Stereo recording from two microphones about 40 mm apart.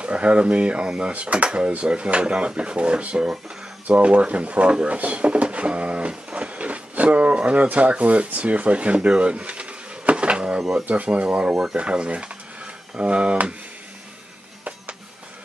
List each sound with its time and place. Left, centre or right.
0.0 s speech: right